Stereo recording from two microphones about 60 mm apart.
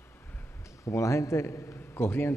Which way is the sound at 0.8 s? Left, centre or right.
Left.